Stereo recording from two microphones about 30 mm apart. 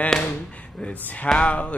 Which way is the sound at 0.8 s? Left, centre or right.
Left.